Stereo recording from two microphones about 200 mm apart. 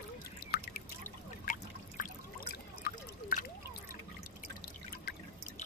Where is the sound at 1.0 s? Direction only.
40° left (ahead or behind).